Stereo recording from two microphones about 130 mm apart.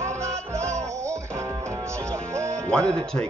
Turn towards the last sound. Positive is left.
turn(degrees=5)  # may be behind; listen again after turning